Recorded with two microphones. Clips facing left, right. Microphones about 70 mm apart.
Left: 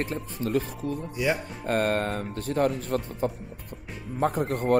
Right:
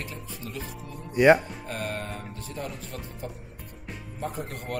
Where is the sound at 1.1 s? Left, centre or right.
Right.